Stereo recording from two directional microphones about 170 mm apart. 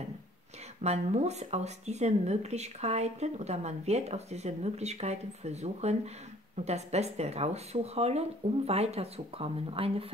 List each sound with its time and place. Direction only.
0.8 s speech: 40° right (ahead or behind)